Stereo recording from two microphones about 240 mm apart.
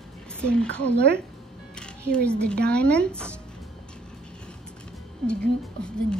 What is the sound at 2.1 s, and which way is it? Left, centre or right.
Speech, centre.